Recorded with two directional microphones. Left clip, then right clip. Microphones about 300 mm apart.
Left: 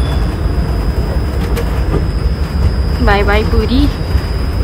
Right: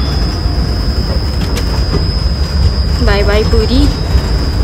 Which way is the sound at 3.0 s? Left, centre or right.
Centre.